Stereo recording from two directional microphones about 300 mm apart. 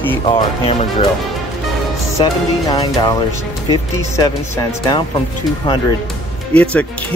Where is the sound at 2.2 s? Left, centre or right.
Centre.